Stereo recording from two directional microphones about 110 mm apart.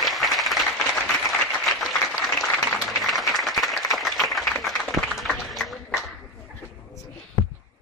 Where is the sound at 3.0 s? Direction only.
Centre (ahead or behind).